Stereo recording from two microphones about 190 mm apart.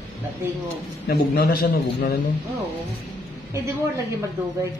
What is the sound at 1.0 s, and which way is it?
A man's voice, 55° left (ahead or behind).